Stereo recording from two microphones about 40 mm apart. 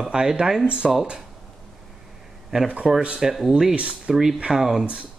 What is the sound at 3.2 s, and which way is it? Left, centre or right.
Speech, centre.